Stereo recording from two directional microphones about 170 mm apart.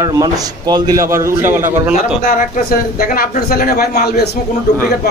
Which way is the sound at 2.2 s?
55° left (ahead or behind).